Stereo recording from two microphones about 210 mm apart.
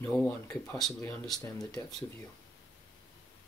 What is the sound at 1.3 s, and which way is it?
Speech, 15° left (ahead or behind).